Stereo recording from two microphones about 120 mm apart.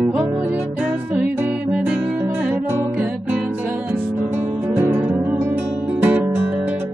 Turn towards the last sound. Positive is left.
turn(degrees=-15)  # may be behind; listen again after turning